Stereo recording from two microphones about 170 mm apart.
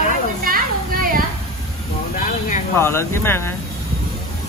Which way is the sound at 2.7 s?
15° left (ahead or behind).